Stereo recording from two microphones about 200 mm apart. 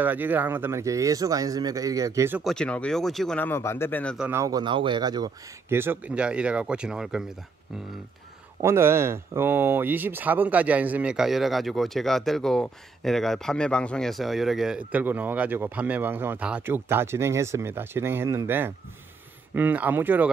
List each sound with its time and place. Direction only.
0.0 s speech: 10° right (ahead or behind)
2.4 s speech: 5° left (ahead or behind)
4.3 s speech: 15° right (ahead or behind)
8.6 s speech: 10° right (ahead or behind)